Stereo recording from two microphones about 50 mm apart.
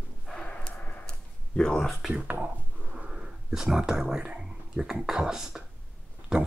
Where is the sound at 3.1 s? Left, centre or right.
Centre.